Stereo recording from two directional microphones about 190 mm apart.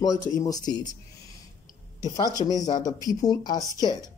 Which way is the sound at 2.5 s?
20° left (ahead or behind).